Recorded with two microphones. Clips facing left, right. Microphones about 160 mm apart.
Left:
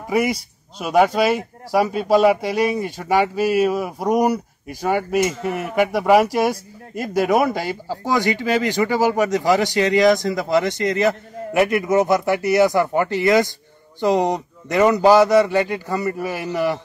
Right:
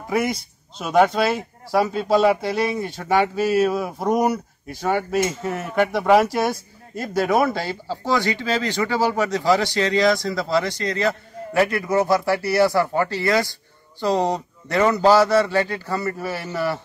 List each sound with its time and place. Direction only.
0.1 s speech: 10° left (ahead or behind)